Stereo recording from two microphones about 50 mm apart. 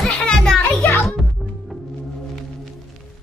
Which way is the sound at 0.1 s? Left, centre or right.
Centre.